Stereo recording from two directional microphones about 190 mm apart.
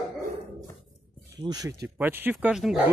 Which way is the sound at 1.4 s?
20° right (ahead or behind).